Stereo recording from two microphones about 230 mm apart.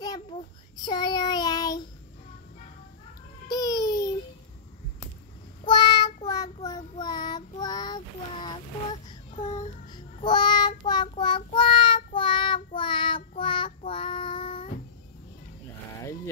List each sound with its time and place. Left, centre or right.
0.0 s a sound: centre
0.8 s child singing: centre
3.4 s babbling: centre
5.7 s child singing: centre
9.8 s child singing: centre